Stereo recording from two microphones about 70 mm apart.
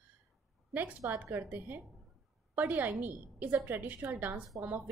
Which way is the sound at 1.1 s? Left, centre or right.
Right.